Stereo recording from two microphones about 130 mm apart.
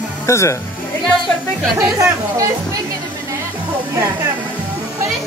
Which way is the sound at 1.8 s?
20° right (ahead or behind).